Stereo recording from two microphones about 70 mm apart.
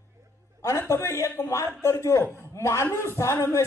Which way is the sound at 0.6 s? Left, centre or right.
Left.